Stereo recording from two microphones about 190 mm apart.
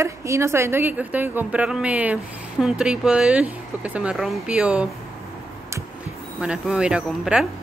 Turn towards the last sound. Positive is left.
turn(degrees=-5)  # may be behind; listen again after turning